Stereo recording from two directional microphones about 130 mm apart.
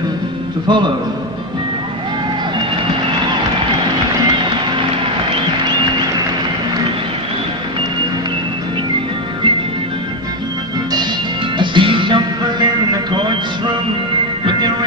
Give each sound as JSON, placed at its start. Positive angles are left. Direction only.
{"t": 0.7, "sound": "a man's voice", "side_deg": -35}
{"t": 11.5, "sound": "music", "side_deg": -40}